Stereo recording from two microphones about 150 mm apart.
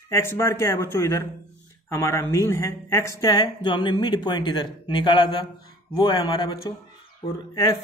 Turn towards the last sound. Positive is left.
turn(degrees=25)  # may be behind; listen again after turning